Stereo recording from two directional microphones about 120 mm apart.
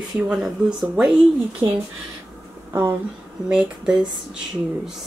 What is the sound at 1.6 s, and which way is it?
Speech, 35° right (ahead or behind).